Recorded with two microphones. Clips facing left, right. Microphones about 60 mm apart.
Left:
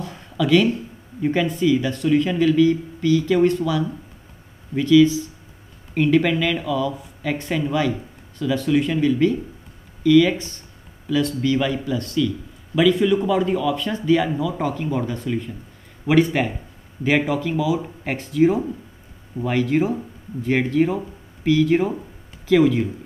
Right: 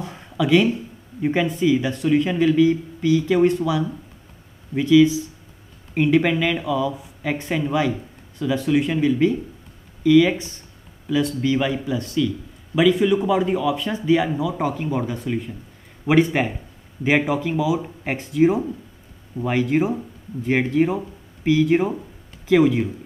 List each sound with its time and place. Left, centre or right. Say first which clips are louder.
0.0 s a sound: even; centre
1.2 s speech: even; centre
16.1 s speech: even; right